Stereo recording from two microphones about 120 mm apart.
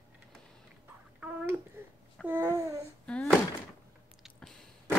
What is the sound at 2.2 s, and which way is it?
Babbling, 20° right (ahead or behind).